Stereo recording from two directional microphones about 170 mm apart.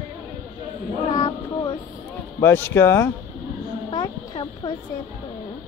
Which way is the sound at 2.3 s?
15° left (ahead or behind).